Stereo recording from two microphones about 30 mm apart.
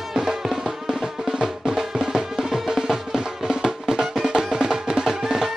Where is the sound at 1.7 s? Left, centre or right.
Right.